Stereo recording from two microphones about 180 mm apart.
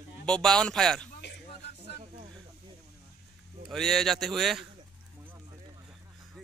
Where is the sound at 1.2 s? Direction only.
70° left (ahead or behind).